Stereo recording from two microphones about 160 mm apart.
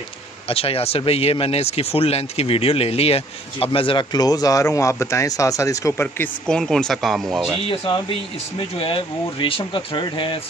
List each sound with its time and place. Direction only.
0.5 s speech: 35° left (ahead or behind); by 7.6 s centre (ahead or behind)
7.6 s speech: 35° left (ahead or behind)